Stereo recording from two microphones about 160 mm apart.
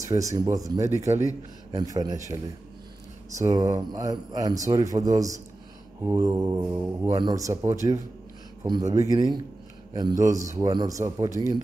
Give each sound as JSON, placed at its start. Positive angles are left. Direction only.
{"t": 0.0, "sound": "speech", "side_deg": -20}
{"t": 9.1, "sound": "speech", "side_deg": -25}